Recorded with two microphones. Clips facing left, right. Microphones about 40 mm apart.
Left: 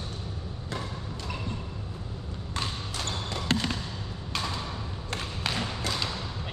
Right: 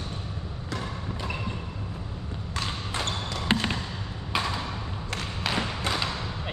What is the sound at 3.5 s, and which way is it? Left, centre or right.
Basketball bounce, right.